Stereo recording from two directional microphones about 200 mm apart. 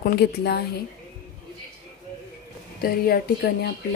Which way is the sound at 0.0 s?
55° left (ahead or behind).